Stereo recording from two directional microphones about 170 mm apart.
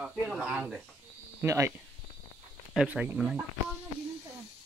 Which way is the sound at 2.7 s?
5° right (ahead or behind).